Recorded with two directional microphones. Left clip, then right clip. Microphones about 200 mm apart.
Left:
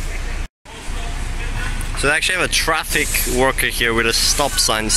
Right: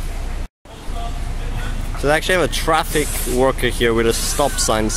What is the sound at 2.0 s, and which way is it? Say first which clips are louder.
Speech: right 1 dB; 10° right (ahead or behind).